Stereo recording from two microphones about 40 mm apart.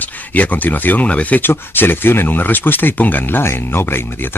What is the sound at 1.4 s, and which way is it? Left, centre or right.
Speech, left.